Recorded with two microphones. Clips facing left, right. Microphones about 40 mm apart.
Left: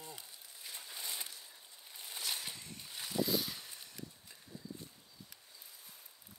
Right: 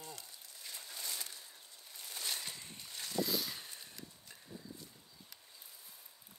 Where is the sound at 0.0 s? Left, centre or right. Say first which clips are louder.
Even; centre.